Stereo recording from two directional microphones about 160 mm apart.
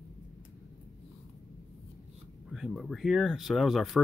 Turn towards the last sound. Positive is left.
turn(degrees=0)  # may be behind; listen again after turning